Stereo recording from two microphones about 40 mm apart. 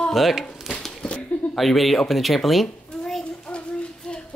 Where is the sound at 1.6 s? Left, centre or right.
Centre.